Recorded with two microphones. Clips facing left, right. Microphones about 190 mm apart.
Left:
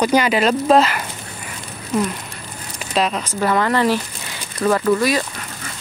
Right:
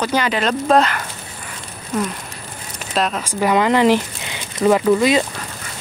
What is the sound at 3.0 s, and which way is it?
Speech, centre (ahead or behind).